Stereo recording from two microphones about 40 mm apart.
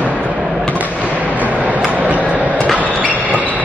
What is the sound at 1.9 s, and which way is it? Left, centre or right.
Vehicle, right.